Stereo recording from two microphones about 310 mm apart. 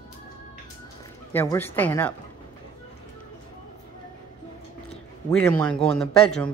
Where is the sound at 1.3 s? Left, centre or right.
Centre.